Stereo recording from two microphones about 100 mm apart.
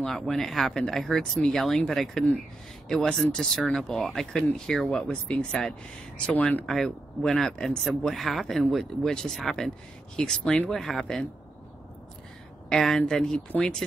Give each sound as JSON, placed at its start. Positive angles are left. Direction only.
{"t": 0.0, "sound": "speech", "side_deg": 5}
{"t": 6.6, "sound": "speech", "side_deg": 5}
{"t": 12.6, "sound": "a woman's voice", "side_deg": 5}